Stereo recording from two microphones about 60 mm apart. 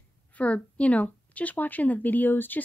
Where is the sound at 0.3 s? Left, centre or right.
Left.